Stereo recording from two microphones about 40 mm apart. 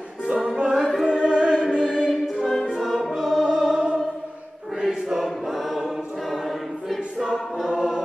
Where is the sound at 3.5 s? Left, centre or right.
Centre.